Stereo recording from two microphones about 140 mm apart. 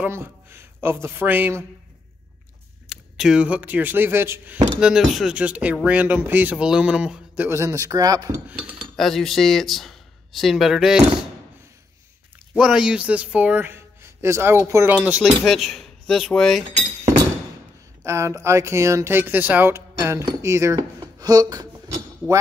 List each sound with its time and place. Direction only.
0.0 s a man's voice: 15° right (ahead or behind)
2.9 s speech: 5° right (ahead or behind)
4.7 s speech: 5° right (ahead or behind); by 8.4 s 25° right (ahead or behind)
8.5 s speech: 10° right (ahead or behind)
8.9 s speech: centre (ahead or behind)
12.5 s speech: 5° right (ahead or behind)
18.0 s speech: 20° right (ahead or behind)